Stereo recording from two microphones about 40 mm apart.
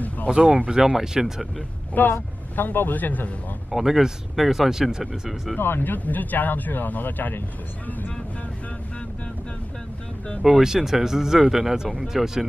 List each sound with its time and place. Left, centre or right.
0.3 s speech: right
2.0 s speech: left
3.7 s speech: centre
5.6 s speech: left
5.9 s speech: left
10.5 s speech: centre